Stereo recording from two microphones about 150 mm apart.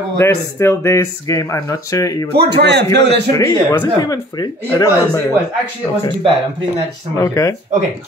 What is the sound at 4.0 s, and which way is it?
Speech, 25° left (ahead or behind).